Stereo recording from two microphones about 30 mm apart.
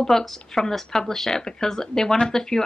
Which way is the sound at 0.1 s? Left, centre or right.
Centre.